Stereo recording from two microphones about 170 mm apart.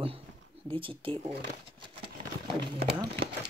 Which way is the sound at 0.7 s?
30° right (ahead or behind).